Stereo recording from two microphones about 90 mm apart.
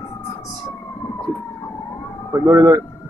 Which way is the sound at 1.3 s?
35° right (ahead or behind).